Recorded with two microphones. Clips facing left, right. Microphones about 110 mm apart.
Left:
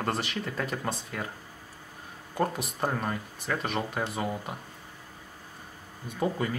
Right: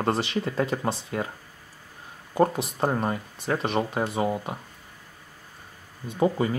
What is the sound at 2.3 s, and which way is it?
Speech, 25° right (ahead or behind).